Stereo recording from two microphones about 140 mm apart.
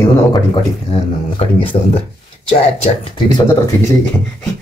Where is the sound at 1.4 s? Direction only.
45° left (ahead or behind).